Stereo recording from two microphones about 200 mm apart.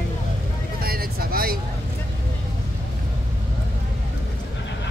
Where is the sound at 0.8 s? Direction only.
50° right (ahead or behind).